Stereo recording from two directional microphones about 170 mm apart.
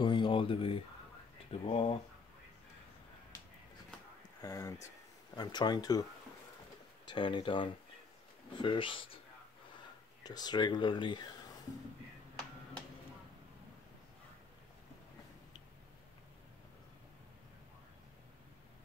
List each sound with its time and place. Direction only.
0.0 s speech: 30° left (ahead or behind)
4.4 s speech: 20° left (ahead or behind)
7.1 s speech: 30° left (ahead or behind)
10.2 s speech: 25° left (ahead or behind)